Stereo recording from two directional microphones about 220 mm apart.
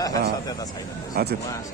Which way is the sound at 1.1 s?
45° right (ahead or behind).